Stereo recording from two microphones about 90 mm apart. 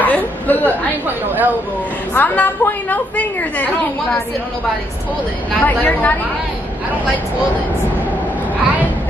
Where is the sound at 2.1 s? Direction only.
20° left (ahead or behind).